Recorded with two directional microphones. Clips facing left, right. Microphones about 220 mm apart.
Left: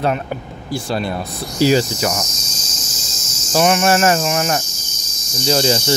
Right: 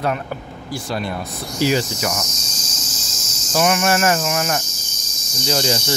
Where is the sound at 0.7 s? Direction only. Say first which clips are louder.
Left 4 dB; 30° left (ahead or behind).